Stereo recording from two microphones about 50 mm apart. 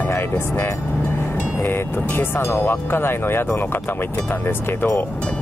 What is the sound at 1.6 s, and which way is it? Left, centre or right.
Speech, left.